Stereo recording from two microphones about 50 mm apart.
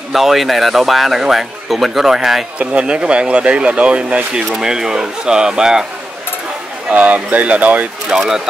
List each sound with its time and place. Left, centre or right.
0.1 s speech: centre
2.6 s speech: right
4.6 s speech: centre
6.9 s speech: right
8.1 s speech: centre